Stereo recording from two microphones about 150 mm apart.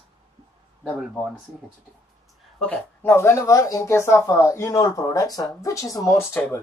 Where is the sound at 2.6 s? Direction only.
10° left (ahead or behind).